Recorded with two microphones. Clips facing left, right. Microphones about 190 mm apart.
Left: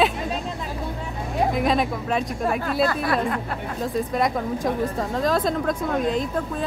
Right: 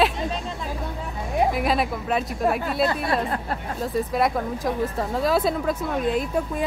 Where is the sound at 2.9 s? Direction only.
25° right (ahead or behind).